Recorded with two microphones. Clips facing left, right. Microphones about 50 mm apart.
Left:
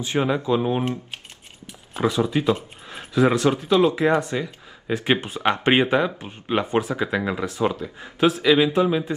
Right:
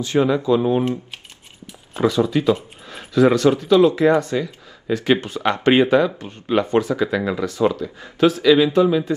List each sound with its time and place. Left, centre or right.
0.0 s speech: left
0.6 s speech: centre
2.0 s speech: centre